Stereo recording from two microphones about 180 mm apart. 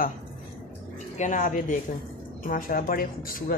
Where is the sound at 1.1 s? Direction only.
45° left (ahead or behind).